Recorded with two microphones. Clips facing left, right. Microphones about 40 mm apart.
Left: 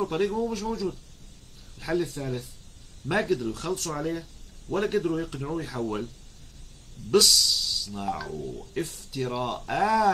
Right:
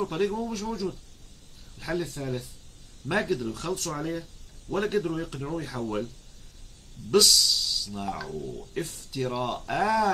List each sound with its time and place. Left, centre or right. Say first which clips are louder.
0.0 s speech: left 2 dB; centre
7.1 s speech: even; centre
8.3 s speech: left 1 dB; centre
8.7 s speech: left 1 dB; centre